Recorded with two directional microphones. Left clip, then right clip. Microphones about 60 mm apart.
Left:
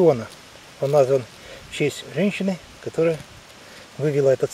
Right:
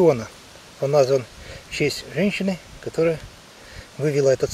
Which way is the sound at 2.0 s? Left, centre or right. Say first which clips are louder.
Even; centre.